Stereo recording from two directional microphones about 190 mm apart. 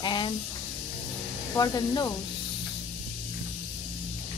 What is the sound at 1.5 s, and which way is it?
Speech, 20° left (ahead or behind).